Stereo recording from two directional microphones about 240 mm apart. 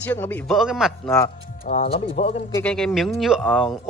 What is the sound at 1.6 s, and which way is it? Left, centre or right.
Speech, left.